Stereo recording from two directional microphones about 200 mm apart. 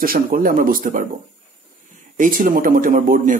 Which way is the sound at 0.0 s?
45° right (ahead or behind).